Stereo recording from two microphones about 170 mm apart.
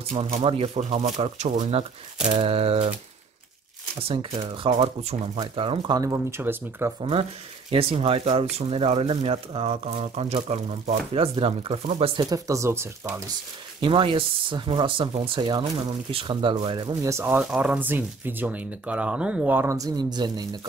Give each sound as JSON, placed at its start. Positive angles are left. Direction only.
{"t": 0.1, "sound": "speech", "side_deg": -40}
{"t": 4.1, "sound": "speech", "side_deg": -30}
{"t": 7.0, "sound": "speech", "side_deg": -35}
{"t": 12.2, "sound": "speech", "side_deg": -20}
{"t": 13.7, "sound": "speech", "side_deg": -30}